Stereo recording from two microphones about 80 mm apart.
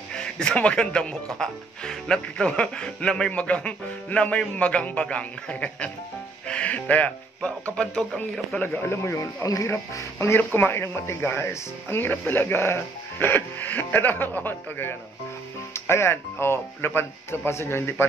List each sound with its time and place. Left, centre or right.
0.1 s speech: centre
8.5 s speech: left
9.2 s speech: left
10.1 s speech: left